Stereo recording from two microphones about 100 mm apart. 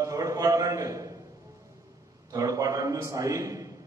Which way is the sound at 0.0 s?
35° right (ahead or behind).